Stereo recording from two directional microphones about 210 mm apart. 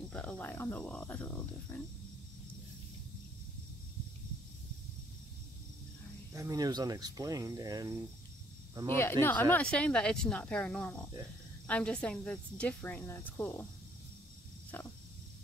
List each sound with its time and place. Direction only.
0.1 s speech: 5° left (ahead or behind)
1.7 s wild animals: 10° left (ahead or behind)
6.3 s speech: 15° right (ahead or behind)
8.9 s speech: 10° left (ahead or behind)